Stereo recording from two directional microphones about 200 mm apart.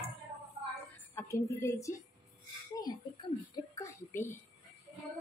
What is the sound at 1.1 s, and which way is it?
Speech, 15° left (ahead or behind).